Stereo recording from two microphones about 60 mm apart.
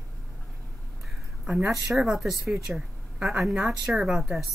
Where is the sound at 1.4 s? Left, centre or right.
Centre.